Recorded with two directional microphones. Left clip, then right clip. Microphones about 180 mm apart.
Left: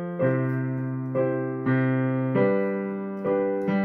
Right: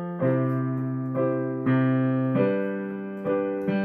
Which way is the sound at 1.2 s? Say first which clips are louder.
Right 1 dB; 25° right (ahead or behind).